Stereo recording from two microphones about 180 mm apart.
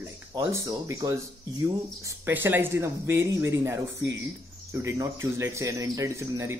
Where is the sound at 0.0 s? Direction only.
15° right (ahead or behind).